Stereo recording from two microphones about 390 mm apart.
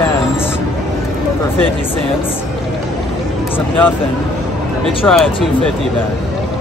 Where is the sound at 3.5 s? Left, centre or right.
Centre.